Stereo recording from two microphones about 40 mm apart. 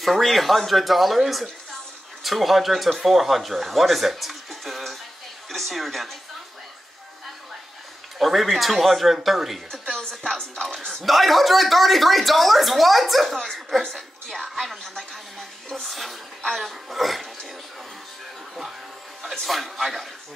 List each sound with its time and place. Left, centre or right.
0.0 s speech: centre
8.2 s speech: centre
9.7 s speech: centre
10.9 s a woman's voice: centre
19.4 s speech: centre